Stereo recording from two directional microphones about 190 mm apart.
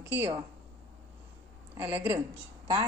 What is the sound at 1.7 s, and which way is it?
Speech, 10° right (ahead or behind).